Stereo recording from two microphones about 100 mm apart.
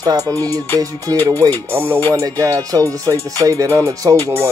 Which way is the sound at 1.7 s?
25° right (ahead or behind).